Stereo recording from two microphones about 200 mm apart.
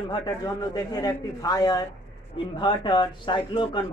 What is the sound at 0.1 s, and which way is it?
Speech, 20° left (ahead or behind).